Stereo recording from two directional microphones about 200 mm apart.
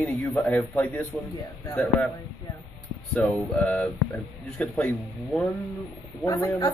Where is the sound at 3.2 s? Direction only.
5° left (ahead or behind).